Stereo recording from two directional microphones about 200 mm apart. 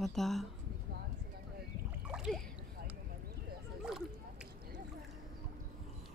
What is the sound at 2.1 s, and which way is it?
Splash, centre (ahead or behind).